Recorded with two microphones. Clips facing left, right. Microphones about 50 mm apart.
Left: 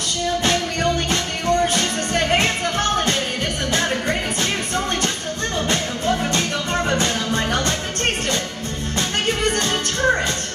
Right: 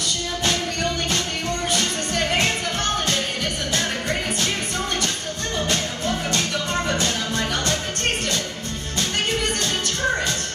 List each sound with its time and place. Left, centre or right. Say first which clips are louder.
1.7 s music: left 3 dB; left
3.7 s music: left 4 dB; centre
9.6 s music: left 3 dB; centre